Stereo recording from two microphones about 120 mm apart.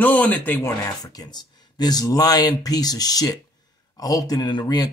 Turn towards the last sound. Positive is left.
turn(degrees=35)  # may be behind; listen again after turning